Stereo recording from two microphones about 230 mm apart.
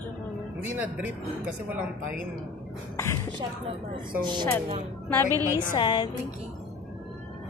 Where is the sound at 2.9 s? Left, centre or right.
Centre.